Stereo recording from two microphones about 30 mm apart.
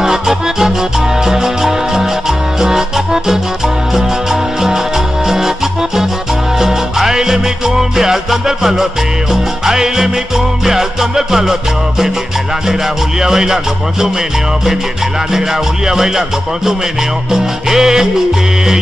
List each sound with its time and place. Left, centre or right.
0.0 s music: centre
6.6 s music: centre
8.5 s salsa music: centre
13.2 s salsa music: centre
15.9 s salsa music: centre